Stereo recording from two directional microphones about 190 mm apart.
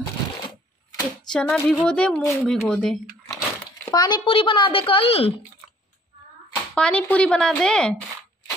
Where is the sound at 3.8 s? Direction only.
20° left (ahead or behind).